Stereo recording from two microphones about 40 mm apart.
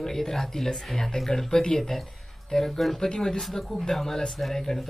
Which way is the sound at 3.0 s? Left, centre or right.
Centre.